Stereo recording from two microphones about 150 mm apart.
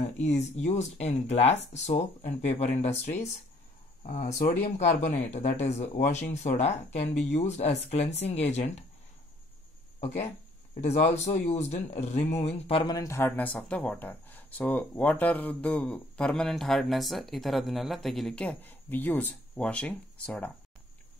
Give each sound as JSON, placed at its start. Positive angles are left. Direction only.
{"t": 0.2, "sound": "speech", "side_deg": 50}
{"t": 9.9, "sound": "speech", "side_deg": 50}
{"t": 12.9, "sound": "speech", "side_deg": 20}